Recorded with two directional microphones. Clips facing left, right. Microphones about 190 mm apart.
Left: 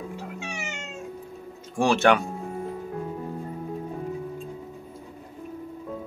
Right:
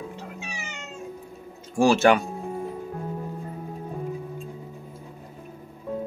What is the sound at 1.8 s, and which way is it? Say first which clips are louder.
Speech: right 2 dB; centre (ahead or behind).